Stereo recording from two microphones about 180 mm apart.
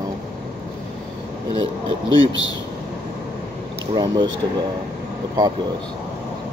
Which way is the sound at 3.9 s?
25° right (ahead or behind).